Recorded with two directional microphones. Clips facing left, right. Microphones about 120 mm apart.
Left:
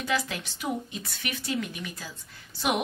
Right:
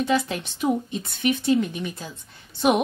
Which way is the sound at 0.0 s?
25° right (ahead or behind).